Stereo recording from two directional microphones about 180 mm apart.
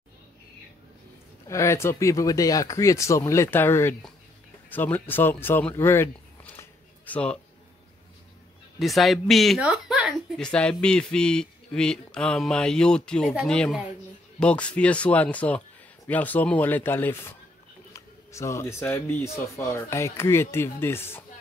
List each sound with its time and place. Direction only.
1.5 s speech: 15° left (ahead or behind)
8.7 s a woman's voice: centre (ahead or behind)